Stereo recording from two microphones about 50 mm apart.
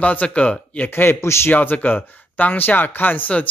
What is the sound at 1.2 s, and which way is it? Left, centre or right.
Speech, left.